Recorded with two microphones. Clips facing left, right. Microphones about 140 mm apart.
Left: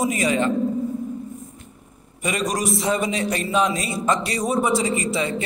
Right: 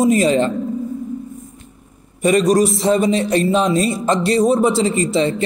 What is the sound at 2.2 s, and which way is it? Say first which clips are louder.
A man's voice: right 11 dB; 30° right (ahead or behind).